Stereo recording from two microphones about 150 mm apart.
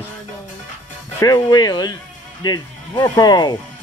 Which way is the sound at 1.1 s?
25° left (ahead or behind).